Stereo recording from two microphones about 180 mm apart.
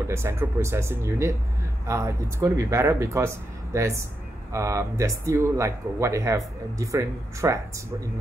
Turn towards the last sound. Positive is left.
turn(degrees=-15)  # may be behind; listen again after turning